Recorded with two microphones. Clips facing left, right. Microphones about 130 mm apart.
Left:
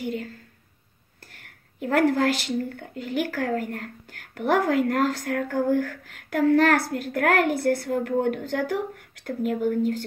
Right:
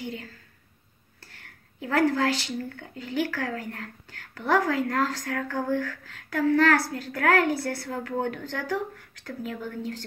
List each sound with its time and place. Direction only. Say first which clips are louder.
1.9 s speech: left 3 dB; 50° left (ahead or behind)